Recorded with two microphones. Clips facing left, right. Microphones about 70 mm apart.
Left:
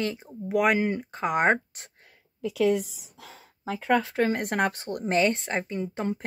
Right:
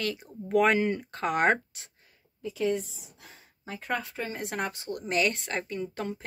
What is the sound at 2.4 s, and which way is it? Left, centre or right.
A woman's voice, left.